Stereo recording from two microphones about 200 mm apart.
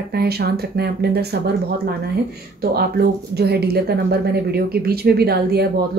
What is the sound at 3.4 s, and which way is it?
A woman's voice, 55° right (ahead or behind).